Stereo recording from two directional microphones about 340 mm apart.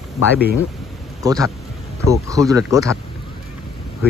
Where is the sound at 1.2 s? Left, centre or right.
Centre.